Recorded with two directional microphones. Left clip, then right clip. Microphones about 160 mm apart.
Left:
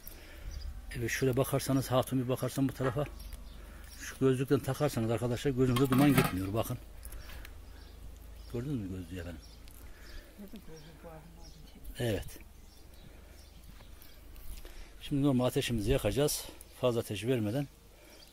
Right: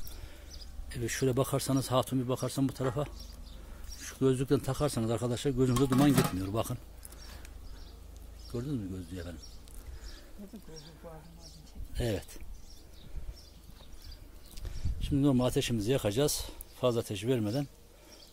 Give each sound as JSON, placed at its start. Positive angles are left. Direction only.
{"t": 0.8, "sound": "a man's voice", "side_deg": 0}
{"t": 6.1, "sound": "speech", "side_deg": -15}
{"t": 6.4, "sound": "a man's voice", "side_deg": 0}
{"t": 8.5, "sound": "speech", "side_deg": 5}
{"t": 11.9, "sound": "a man's voice", "side_deg": 0}
{"t": 15.0, "sound": "a man's voice", "side_deg": -10}